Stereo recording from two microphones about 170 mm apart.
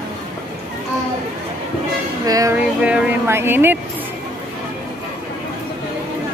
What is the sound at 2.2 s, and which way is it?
Music, 20° right (ahead or behind).